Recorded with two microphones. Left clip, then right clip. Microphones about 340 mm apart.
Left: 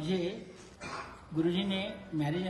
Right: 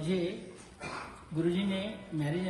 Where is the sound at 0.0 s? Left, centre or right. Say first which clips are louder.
Right 1 dB; centre.